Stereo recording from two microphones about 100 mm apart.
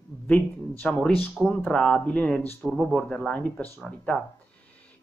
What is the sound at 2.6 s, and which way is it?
Speech, centre (ahead or behind).